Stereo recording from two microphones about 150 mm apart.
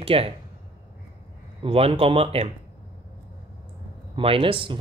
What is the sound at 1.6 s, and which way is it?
Speech, 40° right (ahead or behind).